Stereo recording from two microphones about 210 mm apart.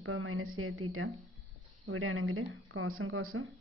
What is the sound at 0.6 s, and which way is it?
A woman's voice, 90° right.